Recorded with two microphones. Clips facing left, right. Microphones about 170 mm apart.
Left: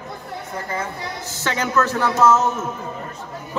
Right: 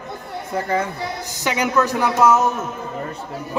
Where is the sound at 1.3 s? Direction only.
15° right (ahead or behind).